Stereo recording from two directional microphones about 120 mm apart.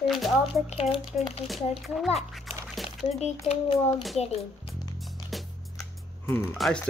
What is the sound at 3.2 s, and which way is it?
Speech, 65° left (ahead or behind).